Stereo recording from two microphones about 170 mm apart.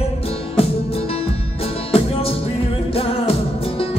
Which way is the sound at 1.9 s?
35° left (ahead or behind).